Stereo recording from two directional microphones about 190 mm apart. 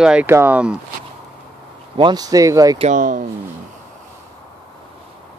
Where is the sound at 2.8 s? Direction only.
40° right (ahead or behind).